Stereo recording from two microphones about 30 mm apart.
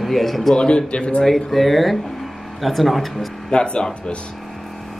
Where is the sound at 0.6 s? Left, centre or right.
Left.